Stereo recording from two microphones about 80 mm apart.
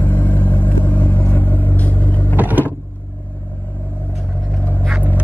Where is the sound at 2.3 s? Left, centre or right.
Right.